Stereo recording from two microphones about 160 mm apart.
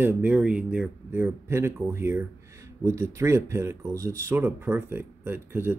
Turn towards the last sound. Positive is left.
turn(degrees=-15)  # may be behind; listen again after turning